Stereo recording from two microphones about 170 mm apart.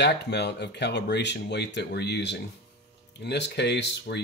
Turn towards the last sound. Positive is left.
turn(degrees=90)